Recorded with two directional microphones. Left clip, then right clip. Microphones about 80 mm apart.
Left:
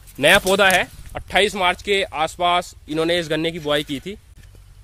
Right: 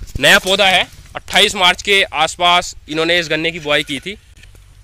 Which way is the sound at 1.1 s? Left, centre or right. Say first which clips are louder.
Right 4 dB; left.